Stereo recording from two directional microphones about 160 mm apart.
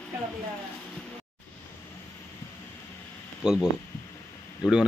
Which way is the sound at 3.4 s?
Centre (ahead or behind).